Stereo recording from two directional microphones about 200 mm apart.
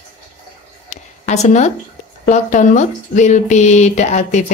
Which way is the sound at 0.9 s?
35° left (ahead or behind).